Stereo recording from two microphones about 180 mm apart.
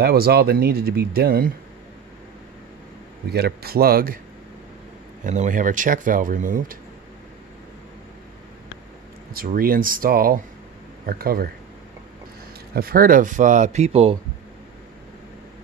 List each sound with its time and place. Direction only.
0.0 s speech: 60° right (ahead or behind)
3.3 s speech: 60° right (ahead or behind)
5.2 s speech: 45° right (ahead or behind)
9.3 s speech: 55° right (ahead or behind)
12.7 s speech: 55° right (ahead or behind); by 14.1 s 35° right (ahead or behind)